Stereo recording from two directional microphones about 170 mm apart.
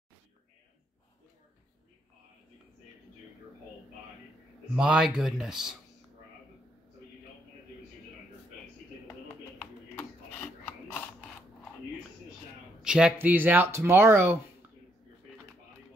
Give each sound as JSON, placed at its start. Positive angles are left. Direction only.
{"t": 4.7, "sound": "speech", "side_deg": -5}
{"t": 9.6, "sound": "a sound", "side_deg": 10}
{"t": 12.8, "sound": "speech", "side_deg": -5}